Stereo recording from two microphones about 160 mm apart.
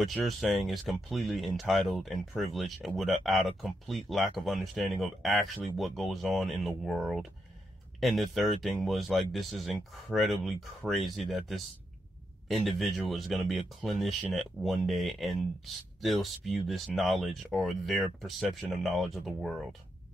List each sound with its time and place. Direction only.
0.0 s speech: centre (ahead or behind)